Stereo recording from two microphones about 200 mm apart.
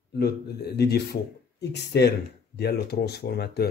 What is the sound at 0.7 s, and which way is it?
Speech, 55° left (ahead or behind).